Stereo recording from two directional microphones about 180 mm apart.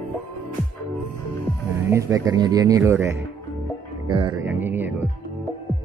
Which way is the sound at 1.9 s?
15° right (ahead or behind).